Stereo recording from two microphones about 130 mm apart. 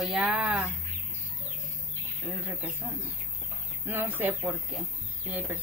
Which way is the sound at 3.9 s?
15° right (ahead or behind).